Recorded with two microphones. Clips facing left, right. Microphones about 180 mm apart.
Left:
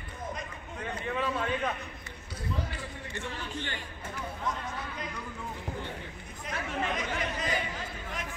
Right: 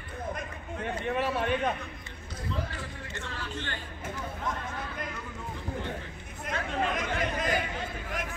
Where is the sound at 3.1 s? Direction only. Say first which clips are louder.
Left 1 dB; 15° left (ahead or behind).